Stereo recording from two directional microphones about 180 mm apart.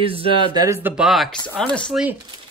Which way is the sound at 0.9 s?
Centre (ahead or behind).